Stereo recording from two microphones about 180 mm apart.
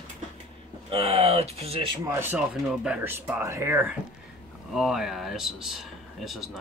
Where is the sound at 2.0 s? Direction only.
15° right (ahead or behind).